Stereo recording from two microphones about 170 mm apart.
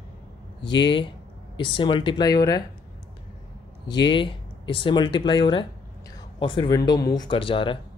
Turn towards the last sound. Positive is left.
turn(degrees=30)  # may be behind; listen again after turning